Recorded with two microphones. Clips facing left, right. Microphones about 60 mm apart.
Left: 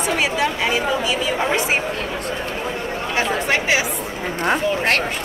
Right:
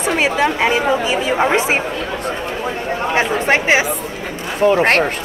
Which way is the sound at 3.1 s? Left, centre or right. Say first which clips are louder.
Right 4 dB; right.